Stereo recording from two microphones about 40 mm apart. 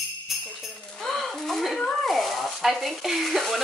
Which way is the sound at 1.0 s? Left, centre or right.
Centre.